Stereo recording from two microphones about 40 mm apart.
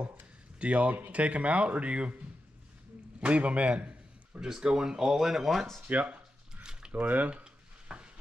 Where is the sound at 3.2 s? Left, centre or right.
Right.